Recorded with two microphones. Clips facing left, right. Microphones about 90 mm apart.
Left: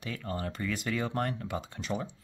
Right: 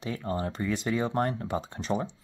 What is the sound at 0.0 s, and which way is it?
Speech, 25° right (ahead or behind).